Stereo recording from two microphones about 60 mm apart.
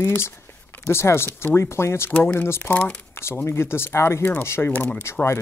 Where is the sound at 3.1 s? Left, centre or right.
Left.